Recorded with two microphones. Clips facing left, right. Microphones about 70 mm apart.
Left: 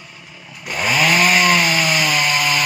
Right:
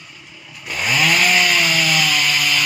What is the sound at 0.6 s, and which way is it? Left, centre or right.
Chainsaw, centre.